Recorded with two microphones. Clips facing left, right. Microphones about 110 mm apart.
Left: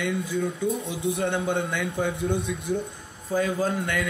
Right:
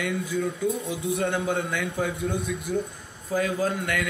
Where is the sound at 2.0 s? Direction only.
25° left (ahead or behind).